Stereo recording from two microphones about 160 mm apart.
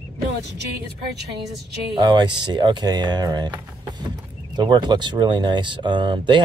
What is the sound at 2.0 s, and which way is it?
Speech, 30° right (ahead or behind).